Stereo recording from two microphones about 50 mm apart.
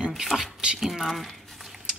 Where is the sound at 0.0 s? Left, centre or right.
Centre.